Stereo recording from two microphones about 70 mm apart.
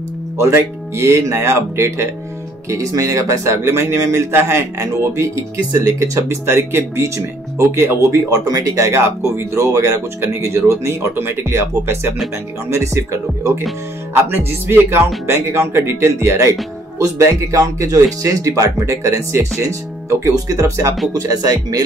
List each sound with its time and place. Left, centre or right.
0.4 s speech: right
2.7 s speech: right
5.8 s speech: right
8.3 s speech: right
14.3 s speech: right
21.1 s speech: right